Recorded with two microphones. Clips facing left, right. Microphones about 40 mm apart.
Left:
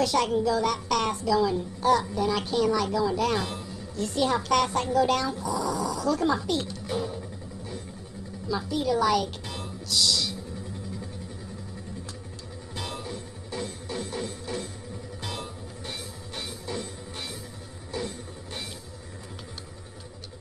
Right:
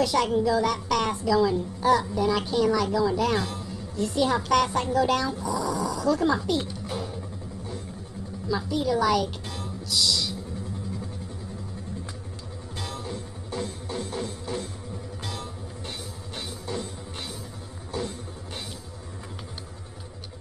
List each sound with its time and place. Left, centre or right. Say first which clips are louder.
0.0 s a child's voice: right 1 dB; centre
8.5 s a child's voice: right 1 dB; centre
9.8 s music: even; centre
12.7 s music: left 1 dB; centre
13.0 s music: right 2 dB; centre
16.3 s music: right 1 dB; centre
17.9 s music: right 1 dB; centre